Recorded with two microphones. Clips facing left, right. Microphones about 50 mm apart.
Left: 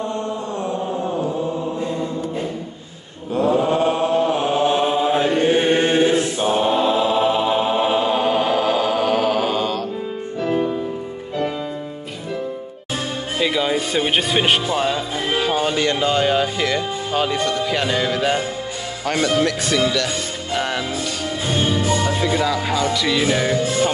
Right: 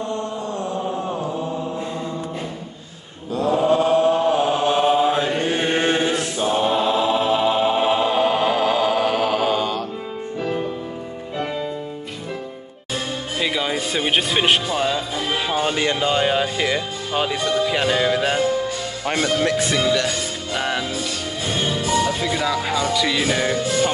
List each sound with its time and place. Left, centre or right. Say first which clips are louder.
3.3 s mantra: even; left
4.4 s chant: even; left
6.6 s chant: left 1 dB; centre
10.4 s music: left 5 dB; centre
13.4 s speech: left 3 dB; centre
15.4 s speech: left 1 dB; centre
20.5 s music: left 1 dB; centre
22.0 s music: left 2 dB; centre